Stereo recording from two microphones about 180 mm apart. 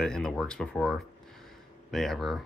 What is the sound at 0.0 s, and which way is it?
Speech, 5° left (ahead or behind).